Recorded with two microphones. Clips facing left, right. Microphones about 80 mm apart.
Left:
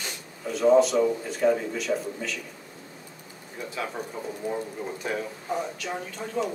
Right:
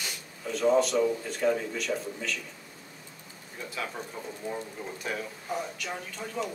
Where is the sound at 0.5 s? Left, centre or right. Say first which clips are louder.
Left 5 dB; centre.